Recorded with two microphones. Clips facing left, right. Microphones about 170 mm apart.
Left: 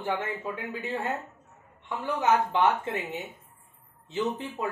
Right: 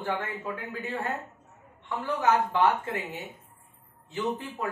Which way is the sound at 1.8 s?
20° left (ahead or behind).